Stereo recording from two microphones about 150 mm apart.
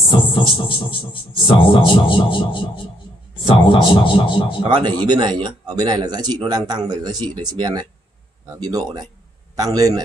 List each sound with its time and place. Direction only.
0.0 s speech: 35° left (ahead or behind)
4.6 s speech: 30° right (ahead or behind)